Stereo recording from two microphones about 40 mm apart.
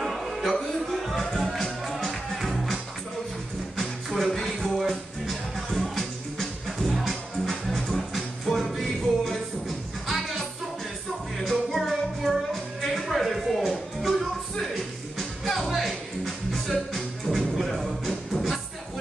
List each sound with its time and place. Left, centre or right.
0.0 s music: centre